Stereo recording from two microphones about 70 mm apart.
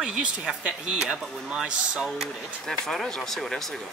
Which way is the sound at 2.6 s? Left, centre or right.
Centre.